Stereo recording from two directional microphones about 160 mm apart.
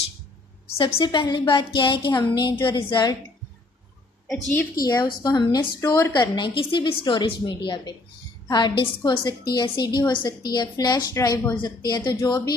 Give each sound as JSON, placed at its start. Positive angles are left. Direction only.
{"t": 0.7, "sound": "a woman's voice", "side_deg": 30}
{"t": 4.7, "sound": "a woman's voice", "side_deg": 25}